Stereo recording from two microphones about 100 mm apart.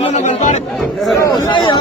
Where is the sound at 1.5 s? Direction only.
50° left (ahead or behind).